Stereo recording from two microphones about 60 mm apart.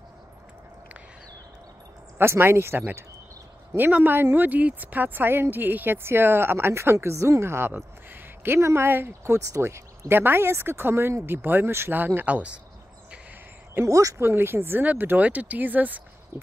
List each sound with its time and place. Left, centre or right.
2.1 s speech: right
4.5 s speech: right
8.8 s speech: right
12.3 s speech: right
13.8 s speech: right
14.1 s speech: right